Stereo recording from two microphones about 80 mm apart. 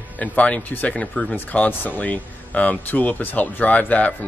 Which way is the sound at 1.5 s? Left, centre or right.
Left.